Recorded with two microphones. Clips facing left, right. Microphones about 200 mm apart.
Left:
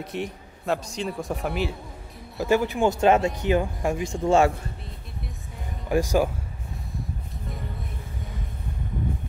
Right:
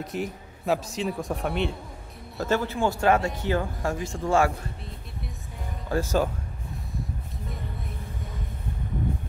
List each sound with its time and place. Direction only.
0.0 s a man's voice: centre (ahead or behind); by 4.5 s 25° left (ahead or behind)
5.9 s speech: 15° left (ahead or behind)